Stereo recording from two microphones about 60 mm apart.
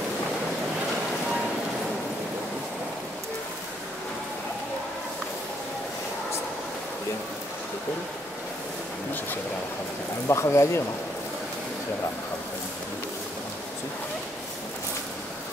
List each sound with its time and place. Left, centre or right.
10.2 s speech: left